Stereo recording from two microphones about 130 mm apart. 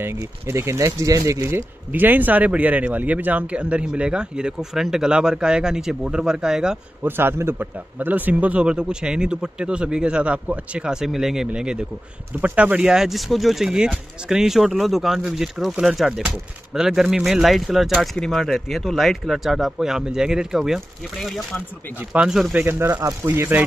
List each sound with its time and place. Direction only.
0.0 s speech: 20° right (ahead or behind)
7.1 s speech: 15° right (ahead or behind)
22.6 s speech: 15° right (ahead or behind)